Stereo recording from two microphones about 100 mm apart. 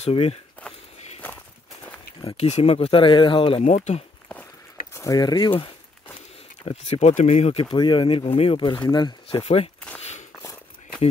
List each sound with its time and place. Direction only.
0.0 s speech: 85° left
2.3 s speech: 90° left
4.9 s a sound: 35° left (ahead or behind)
5.2 s speech: 45° left (ahead or behind)
6.6 s speech: 90° left
7.7 s speech: 50° left (ahead or behind)
8.9 s speech: 50° left (ahead or behind)
9.4 s speech: 80° left